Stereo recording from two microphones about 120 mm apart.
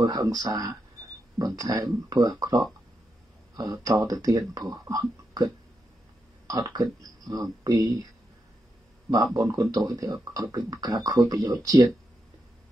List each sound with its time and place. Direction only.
0.0 s speech: 30° right (ahead or behind)
9.1 s speech: 30° right (ahead or behind)